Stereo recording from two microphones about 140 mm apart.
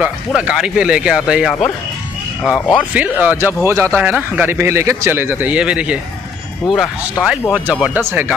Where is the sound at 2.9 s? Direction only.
10° right (ahead or behind).